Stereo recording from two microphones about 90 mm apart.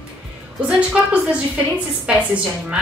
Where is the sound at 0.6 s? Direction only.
15° right (ahead or behind).